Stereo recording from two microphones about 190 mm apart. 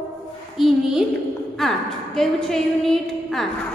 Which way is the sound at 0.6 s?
Centre (ahead or behind).